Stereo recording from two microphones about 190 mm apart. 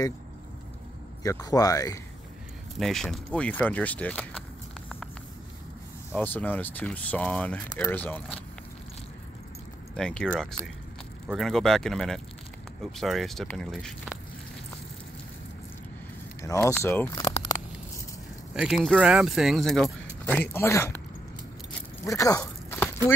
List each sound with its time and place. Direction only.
1.2 s speech: 20° left (ahead or behind)
2.8 s speech: centre (ahead or behind)
6.1 s speech: 10° left (ahead or behind)
9.9 s speech: 5° left (ahead or behind)
16.3 s speech: 15° left (ahead or behind)
17.1 s crumpling: 20° left (ahead or behind)
18.5 s speech: 5° right (ahead or behind); by 21.0 s 15° left (ahead or behind)
22.0 s a sound: 15° left (ahead or behind)